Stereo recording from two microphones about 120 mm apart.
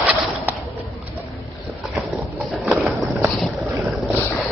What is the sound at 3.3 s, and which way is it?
Boat, centre (ahead or behind).